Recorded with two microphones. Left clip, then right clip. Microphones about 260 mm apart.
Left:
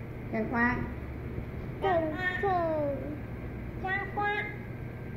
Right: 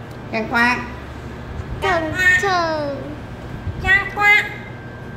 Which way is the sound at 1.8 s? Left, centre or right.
Right.